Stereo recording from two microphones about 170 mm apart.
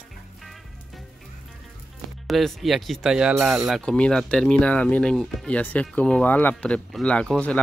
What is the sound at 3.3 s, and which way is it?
Speech, 15° right (ahead or behind).